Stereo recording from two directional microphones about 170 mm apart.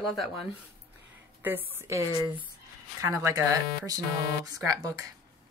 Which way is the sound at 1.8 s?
15° right (ahead or behind).